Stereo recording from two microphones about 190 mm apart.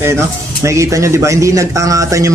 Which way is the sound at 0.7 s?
15° right (ahead or behind).